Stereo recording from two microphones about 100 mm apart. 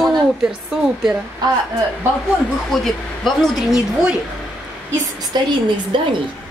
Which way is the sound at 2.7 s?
5° left (ahead or behind).